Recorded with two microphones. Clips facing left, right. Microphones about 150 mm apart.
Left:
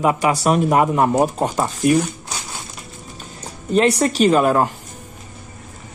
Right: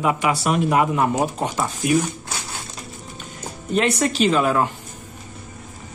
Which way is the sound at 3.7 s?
35° left (ahead or behind).